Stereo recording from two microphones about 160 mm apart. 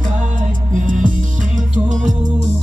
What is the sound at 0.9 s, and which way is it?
Music, 55° right (ahead or behind).